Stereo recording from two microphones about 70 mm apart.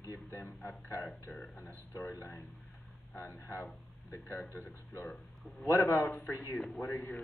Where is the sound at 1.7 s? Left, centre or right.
Left.